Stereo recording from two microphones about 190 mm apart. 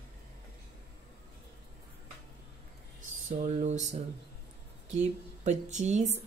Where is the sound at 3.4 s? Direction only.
40° right (ahead or behind).